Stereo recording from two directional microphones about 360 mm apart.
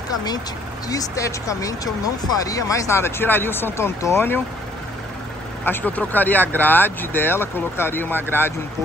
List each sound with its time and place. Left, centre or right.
0.1 s speech: centre
5.7 s speech: centre